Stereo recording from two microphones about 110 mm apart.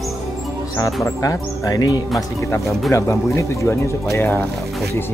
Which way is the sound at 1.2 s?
30° left (ahead or behind).